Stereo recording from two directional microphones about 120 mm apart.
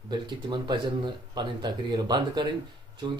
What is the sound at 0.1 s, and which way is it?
Speech, 40° right (ahead or behind).